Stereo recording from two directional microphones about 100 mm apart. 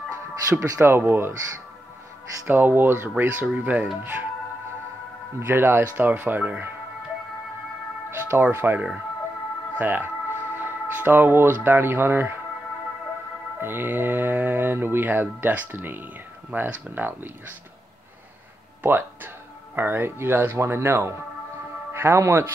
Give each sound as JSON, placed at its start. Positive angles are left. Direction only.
{"t": 0.5, "sound": "speech", "side_deg": -35}
{"t": 0.7, "sound": "speech", "side_deg": -25}
{"t": 2.4, "sound": "speech", "side_deg": -20}
{"t": 5.5, "sound": "speech", "side_deg": -25}
{"t": 8.1, "sound": "speech", "side_deg": -25}
{"t": 13.6, "sound": "speech", "side_deg": -20}
{"t": 18.8, "sound": "speech", "side_deg": -20}